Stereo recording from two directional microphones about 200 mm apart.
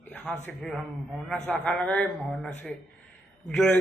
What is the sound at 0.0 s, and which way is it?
A man's voice, 10° left (ahead or behind).